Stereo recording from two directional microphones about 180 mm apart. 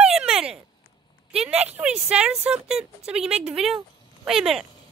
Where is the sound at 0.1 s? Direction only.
5° right (ahead or behind).